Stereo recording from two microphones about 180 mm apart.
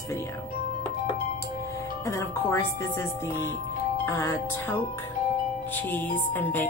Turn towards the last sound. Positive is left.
turn(degrees=10)  # may be behind; listen again after turning